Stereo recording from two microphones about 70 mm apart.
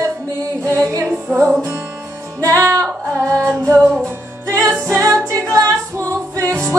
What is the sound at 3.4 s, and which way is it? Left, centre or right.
Singing, right.